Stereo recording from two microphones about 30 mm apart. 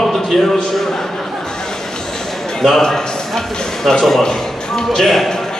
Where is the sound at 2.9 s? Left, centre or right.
Centre.